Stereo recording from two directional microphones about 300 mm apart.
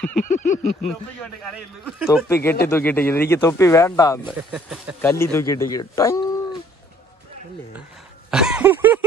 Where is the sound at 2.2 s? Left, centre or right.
Centre.